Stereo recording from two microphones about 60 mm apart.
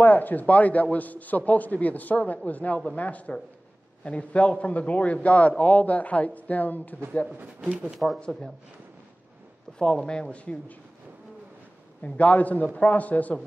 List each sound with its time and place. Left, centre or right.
0.0 s a man's voice: left
7.6 s speech: centre
7.9 s speech: centre
9.8 s a man's voice: centre
12.0 s a man's voice: left